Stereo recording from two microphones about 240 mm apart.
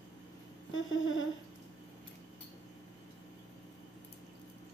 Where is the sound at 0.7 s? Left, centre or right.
Left.